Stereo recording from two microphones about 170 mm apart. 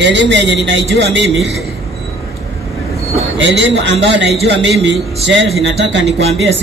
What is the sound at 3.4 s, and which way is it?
A man's voice, 90° right.